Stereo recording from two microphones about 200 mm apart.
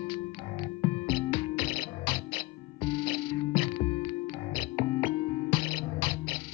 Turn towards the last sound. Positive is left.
turn(degrees=25)  # may be behind; listen again after turning